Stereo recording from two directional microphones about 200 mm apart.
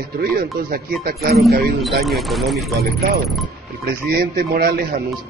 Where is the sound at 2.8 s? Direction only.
50° right (ahead or behind).